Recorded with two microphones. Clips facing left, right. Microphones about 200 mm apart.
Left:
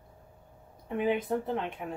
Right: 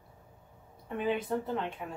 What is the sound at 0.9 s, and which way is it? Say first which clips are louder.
Speech: left 3 dB; 15° left (ahead or behind).